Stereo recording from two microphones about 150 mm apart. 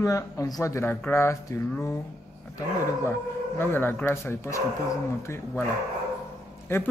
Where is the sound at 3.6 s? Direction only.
15° left (ahead or behind).